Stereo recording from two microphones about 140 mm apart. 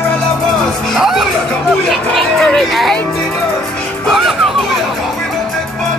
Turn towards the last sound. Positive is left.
turn(degrees=0)  # may be behind; listen again after turning